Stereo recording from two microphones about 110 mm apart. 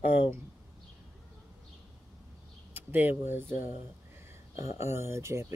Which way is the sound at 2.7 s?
20° right (ahead or behind).